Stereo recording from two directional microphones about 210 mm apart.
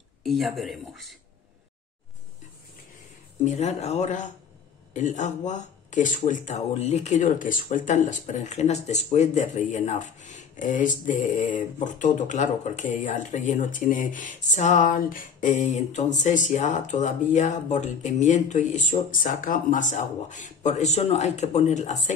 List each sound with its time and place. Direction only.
0.2 s speech: centre (ahead or behind)
3.4 s speech: 35° left (ahead or behind)